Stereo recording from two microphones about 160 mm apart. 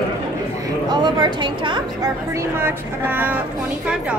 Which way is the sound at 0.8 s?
30° right (ahead or behind).